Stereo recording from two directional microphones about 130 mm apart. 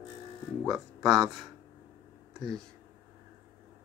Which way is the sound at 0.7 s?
5° right (ahead or behind).